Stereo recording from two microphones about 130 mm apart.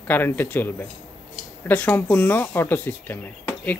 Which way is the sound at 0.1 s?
15° left (ahead or behind).